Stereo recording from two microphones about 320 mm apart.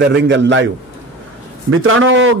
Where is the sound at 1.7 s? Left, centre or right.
Right.